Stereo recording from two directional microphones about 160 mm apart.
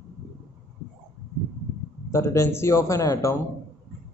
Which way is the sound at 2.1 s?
15° left (ahead or behind).